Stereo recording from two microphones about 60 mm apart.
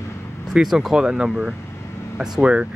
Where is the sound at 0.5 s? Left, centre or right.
Centre.